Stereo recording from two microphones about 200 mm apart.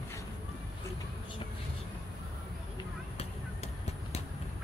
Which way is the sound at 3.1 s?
30° left (ahead or behind).